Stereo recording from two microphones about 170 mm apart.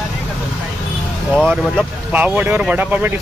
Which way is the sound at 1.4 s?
Centre (ahead or behind).